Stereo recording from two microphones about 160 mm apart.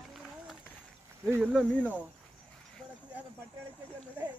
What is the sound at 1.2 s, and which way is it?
Speech, 15° right (ahead or behind).